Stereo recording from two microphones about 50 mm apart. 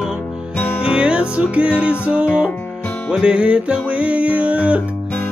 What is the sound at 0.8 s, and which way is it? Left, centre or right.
Music, centre.